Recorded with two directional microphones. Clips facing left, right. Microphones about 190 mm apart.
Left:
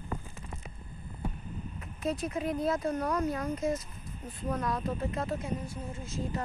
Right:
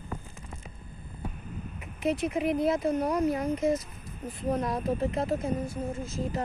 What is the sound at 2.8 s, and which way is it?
Speech, 15° right (ahead or behind).